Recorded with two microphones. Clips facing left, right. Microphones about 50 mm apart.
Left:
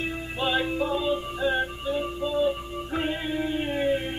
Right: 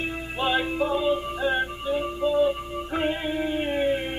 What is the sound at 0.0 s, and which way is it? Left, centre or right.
Music, centre.